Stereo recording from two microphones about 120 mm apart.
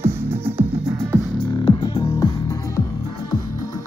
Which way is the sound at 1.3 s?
45° left (ahead or behind).